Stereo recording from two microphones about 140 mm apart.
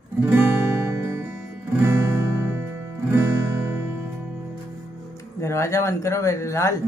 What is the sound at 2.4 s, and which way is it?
Music, 15° right (ahead or behind).